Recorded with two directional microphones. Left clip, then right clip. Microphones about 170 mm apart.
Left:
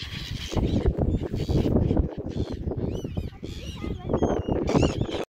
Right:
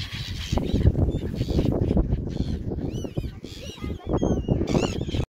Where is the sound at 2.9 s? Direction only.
35° right (ahead or behind).